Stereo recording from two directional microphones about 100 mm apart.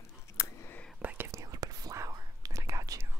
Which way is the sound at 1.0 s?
20° right (ahead or behind).